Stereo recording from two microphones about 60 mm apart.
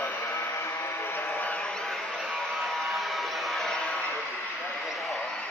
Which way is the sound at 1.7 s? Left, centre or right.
Centre.